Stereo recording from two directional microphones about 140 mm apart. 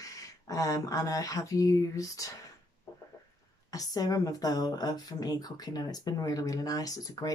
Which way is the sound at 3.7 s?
25° left (ahead or behind).